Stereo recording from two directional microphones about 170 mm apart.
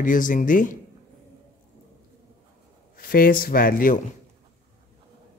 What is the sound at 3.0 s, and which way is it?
Speech, 60° left (ahead or behind).